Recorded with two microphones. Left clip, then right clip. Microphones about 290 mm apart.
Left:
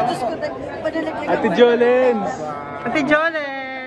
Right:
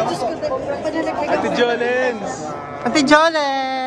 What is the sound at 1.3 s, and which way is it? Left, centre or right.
A man's voice, centre.